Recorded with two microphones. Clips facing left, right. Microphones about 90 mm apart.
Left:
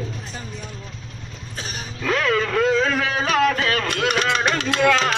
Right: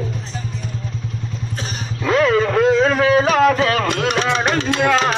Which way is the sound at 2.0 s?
25° right (ahead or behind).